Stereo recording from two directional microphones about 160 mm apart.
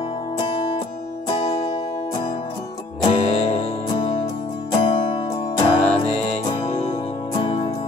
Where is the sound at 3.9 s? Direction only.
35° left (ahead or behind).